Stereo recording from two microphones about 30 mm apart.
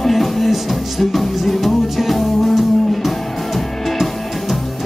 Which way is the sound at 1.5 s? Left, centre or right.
Centre.